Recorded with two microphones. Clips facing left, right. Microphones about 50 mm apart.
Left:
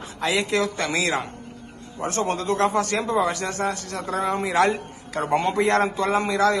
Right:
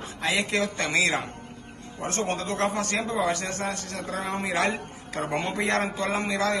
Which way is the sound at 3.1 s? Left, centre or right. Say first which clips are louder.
Left 4 dB; left.